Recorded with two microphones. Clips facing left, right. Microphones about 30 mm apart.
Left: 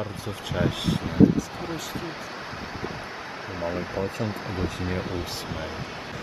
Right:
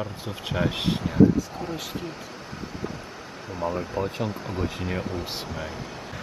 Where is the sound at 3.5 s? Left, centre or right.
Left.